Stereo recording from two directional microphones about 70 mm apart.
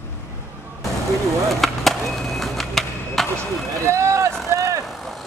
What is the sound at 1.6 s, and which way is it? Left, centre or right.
Wood, centre.